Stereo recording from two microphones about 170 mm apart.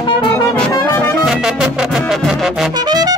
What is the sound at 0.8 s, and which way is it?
Brass instrument, 10° left (ahead or behind).